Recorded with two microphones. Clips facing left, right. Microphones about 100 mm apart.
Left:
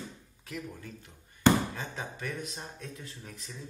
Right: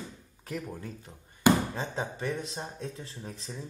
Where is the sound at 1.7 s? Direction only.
30° right (ahead or behind).